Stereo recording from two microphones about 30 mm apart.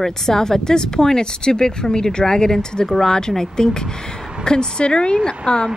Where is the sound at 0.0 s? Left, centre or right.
Centre.